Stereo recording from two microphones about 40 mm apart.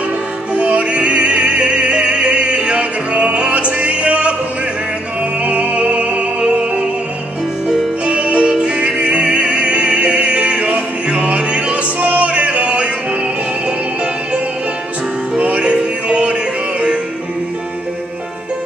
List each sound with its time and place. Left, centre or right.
0.6 s opera: right
3.5 s music: right
5.4 s music: right
8.0 s music: right
9.0 s opera: right
12.0 s music: right
12.3 s music: right
15.3 s music: right